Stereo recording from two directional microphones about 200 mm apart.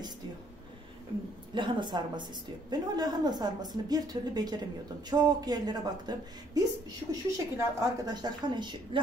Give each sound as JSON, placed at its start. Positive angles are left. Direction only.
{"t": 1.5, "sound": "a woman's voice", "side_deg": -25}